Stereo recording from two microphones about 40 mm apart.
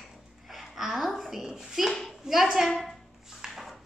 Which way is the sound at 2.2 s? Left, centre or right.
Centre.